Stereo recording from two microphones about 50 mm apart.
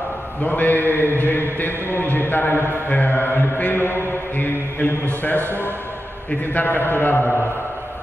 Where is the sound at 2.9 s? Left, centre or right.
Left.